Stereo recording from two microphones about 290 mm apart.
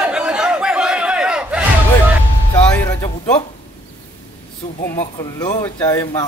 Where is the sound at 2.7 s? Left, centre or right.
Centre.